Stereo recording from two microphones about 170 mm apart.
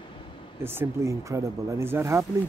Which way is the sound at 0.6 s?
15° right (ahead or behind).